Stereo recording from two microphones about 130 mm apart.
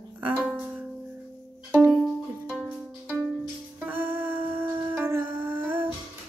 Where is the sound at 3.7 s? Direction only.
15° right (ahead or behind).